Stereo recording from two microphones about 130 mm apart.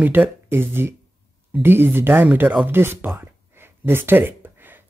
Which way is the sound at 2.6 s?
15° right (ahead or behind).